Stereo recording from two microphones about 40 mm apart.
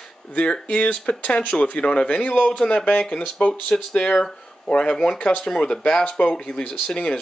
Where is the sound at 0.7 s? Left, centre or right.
Left.